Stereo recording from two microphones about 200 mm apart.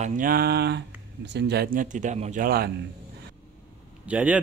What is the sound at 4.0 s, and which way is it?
Speech, 5° right (ahead or behind).